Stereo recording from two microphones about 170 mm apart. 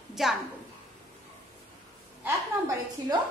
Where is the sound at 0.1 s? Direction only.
Centre (ahead or behind).